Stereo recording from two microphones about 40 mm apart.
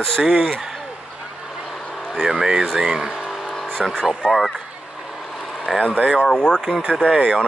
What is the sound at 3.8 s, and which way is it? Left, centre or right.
Speech, centre.